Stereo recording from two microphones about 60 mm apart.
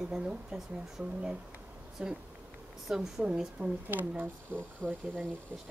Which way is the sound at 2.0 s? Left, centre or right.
Centre.